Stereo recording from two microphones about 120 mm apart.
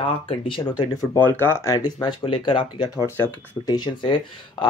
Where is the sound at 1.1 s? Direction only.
15° left (ahead or behind); by 2.1 s 35° left (ahead or behind).